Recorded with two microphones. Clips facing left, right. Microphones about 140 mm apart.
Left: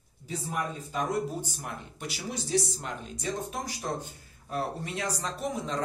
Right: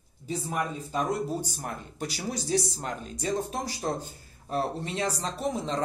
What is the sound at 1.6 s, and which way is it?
A man's voice, 40° right (ahead or behind).